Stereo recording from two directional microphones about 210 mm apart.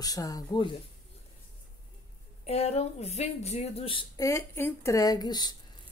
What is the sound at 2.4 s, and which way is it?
Speech, 30° left (ahead or behind).